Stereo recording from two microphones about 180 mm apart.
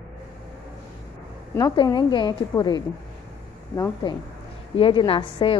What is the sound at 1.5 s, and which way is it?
A woman's voice, 20° left (ahead or behind).